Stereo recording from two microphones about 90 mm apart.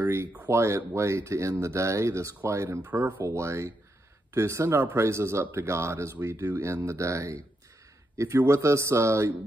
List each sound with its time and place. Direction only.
0.0 s speech: 25° right (ahead or behind)